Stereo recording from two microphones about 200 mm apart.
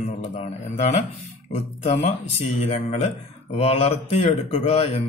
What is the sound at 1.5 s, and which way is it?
A man's voice, 35° left (ahead or behind).